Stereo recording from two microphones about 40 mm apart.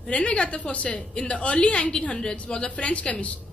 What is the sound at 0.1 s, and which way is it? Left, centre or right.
A woman's voice, left.